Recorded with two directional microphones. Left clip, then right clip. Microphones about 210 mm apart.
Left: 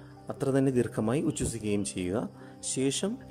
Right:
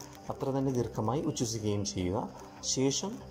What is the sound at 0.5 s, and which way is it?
Speech, 55° left (ahead or behind).